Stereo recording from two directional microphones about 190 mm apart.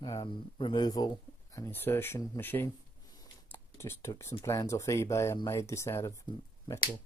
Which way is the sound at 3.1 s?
10° left (ahead or behind).